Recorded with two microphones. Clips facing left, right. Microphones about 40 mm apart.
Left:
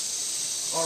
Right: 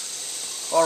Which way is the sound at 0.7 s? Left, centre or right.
Right.